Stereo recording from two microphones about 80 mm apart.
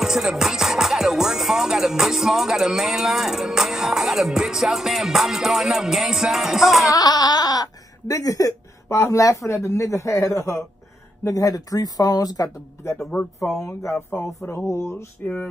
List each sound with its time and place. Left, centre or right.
0.0 s speech: centre
6.9 s speech: left
8.8 s a man's voice: left
13.0 s speech: centre
13.6 s a man's voice: left